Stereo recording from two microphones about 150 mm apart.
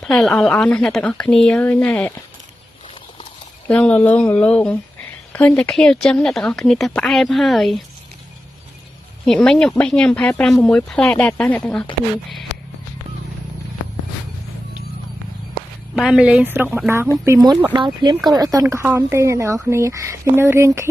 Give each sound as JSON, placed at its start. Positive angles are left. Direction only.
{"t": 0.0, "sound": "speech", "side_deg": 5}
{"t": 3.6, "sound": "speech", "side_deg": 10}
{"t": 9.2, "sound": "speech", "side_deg": 5}
{"t": 15.9, "sound": "speech", "side_deg": -5}
{"t": 17.7, "sound": "speech", "side_deg": -30}